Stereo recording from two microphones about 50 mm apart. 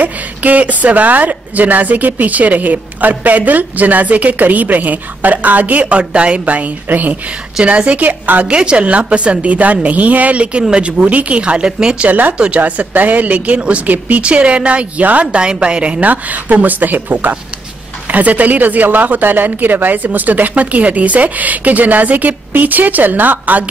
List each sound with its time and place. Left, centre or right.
0.0 s a woman's voice: right
8.5 s a woman's voice: right
12.1 s a woman's voice: right
16.1 s a woman's voice: right